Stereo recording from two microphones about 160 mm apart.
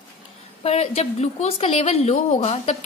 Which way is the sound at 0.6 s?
40° left (ahead or behind).